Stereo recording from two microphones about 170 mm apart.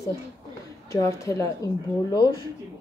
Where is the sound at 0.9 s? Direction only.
20° left (ahead or behind).